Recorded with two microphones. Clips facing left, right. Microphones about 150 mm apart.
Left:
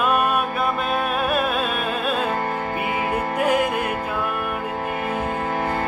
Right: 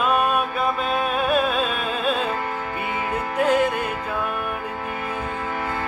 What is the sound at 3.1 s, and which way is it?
Music, 10° left (ahead or behind).